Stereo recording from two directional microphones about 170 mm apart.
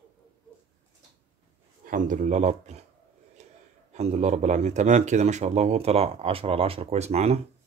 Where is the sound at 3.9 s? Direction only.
40° right (ahead or behind).